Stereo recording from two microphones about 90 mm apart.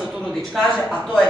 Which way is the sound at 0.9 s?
10° left (ahead or behind).